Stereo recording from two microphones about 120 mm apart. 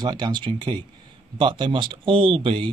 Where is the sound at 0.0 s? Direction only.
35° right (ahead or behind).